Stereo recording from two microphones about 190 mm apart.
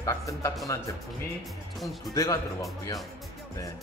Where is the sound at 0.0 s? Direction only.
15° left (ahead or behind).